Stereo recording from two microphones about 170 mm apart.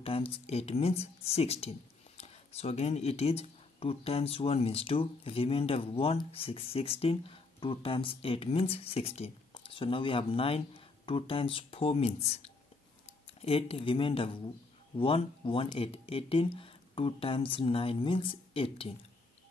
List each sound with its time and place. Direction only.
0.0 s speech: 35° left (ahead or behind)